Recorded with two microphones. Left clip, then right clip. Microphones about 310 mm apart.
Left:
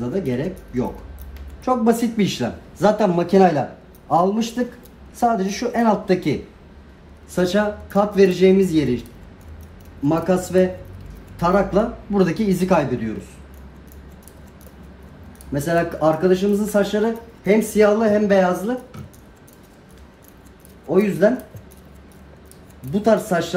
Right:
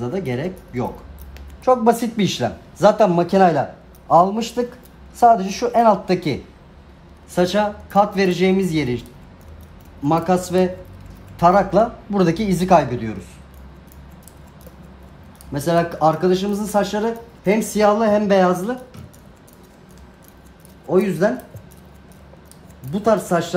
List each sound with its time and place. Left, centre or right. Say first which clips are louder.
0.1 s speech: left 1 dB; centre
7.3 s speech: right 1 dB; centre
10.0 s speech: right 1 dB; centre
15.5 s speech: right 1 dB; centre
20.9 s speech: left 1 dB; centre
22.8 s speech: even; centre